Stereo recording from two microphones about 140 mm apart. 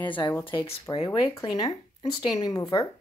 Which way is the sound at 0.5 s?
35° left (ahead or behind).